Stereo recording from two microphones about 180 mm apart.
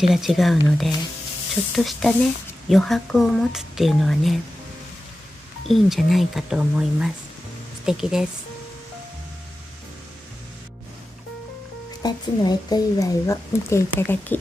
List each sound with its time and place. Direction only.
0.1 s speech: centre (ahead or behind)
5.7 s speech: centre (ahead or behind)
12.0 s speech: 20° left (ahead or behind)